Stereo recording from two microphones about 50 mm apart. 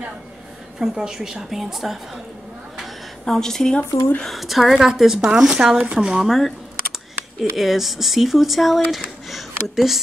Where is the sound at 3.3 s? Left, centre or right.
Centre.